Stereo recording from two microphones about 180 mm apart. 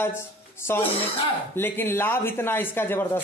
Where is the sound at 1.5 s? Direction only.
10° left (ahead or behind).